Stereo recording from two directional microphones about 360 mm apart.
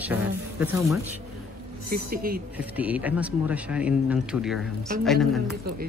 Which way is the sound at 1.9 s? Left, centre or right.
Right.